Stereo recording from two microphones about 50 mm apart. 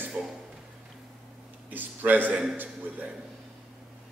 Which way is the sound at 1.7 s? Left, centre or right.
Right.